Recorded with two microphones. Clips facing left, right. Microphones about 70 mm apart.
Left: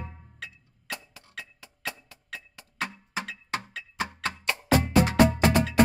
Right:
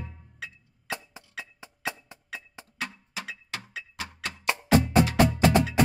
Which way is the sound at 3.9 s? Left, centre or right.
Left.